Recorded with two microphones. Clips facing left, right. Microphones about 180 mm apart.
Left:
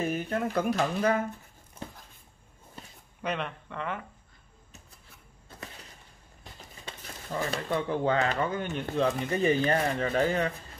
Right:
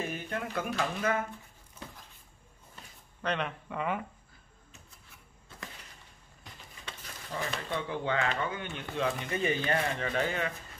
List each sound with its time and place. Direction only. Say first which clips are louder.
0.1 s speech: left 6 dB; 40° left (ahead or behind)
3.2 s speech: even; 10° left (ahead or behind)
3.4 s speech: right 2 dB; 10° right (ahead or behind)
6.9 s speech: left 4 dB; 35° left (ahead or behind)